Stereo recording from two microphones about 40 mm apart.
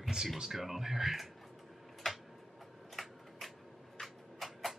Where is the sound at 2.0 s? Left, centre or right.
Centre.